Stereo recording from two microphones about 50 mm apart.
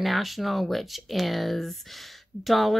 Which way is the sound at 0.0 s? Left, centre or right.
Centre.